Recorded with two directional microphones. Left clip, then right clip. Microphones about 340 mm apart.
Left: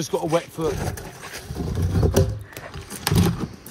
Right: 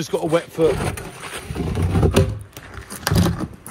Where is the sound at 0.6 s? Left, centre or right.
Centre.